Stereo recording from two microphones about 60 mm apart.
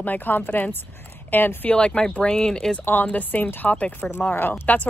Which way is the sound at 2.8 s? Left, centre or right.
Left.